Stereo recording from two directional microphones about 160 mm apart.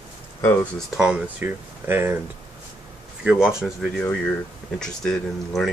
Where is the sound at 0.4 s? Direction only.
10° left (ahead or behind).